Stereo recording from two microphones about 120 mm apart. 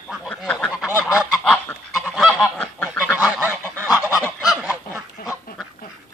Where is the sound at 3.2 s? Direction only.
15° right (ahead or behind).